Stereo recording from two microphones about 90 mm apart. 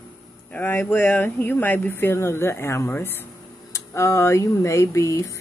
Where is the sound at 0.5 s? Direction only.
25° left (ahead or behind).